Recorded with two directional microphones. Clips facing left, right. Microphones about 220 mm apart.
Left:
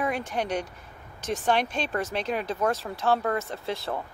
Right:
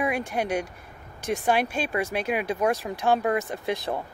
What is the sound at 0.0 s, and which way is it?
Speech, 10° right (ahead or behind).